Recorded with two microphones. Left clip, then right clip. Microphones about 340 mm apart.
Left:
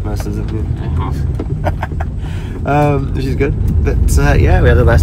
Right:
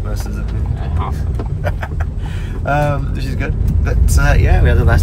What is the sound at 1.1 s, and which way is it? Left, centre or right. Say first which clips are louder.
Speech: left 4 dB; centre.